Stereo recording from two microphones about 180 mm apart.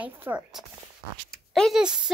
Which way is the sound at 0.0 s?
10° right (ahead or behind).